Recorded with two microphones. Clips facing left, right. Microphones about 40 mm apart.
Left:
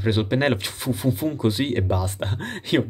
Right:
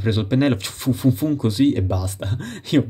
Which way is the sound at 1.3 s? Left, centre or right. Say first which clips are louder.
Right 4 dB; left.